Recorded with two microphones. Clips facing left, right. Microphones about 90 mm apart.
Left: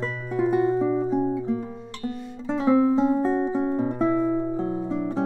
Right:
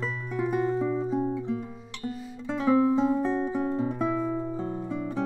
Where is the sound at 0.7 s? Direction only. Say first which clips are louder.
Left 5 dB; 15° left (ahead or behind).